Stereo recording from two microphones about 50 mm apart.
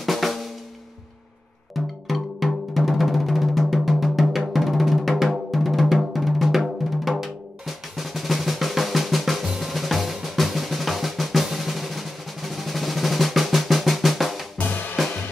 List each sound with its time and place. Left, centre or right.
0.0 s drum: centre
2.0 s music: centre
9.6 s drum: centre
14.6 s music: left